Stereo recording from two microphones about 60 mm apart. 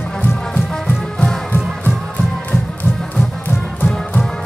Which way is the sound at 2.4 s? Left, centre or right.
Left.